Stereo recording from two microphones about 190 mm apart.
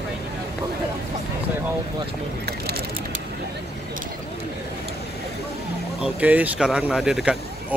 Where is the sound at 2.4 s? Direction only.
55° right (ahead or behind).